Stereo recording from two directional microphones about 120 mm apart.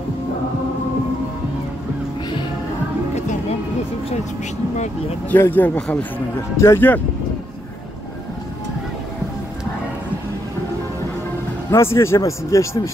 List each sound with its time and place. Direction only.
5.3 s a man's voice: 15° left (ahead or behind)
6.5 s a man's voice: 25° left (ahead or behind)
11.7 s a man's voice: 20° left (ahead or behind)